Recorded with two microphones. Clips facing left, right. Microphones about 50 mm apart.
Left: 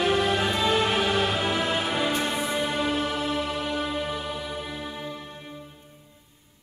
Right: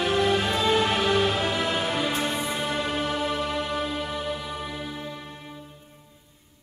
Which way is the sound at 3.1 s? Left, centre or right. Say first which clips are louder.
Right 1 dB; right.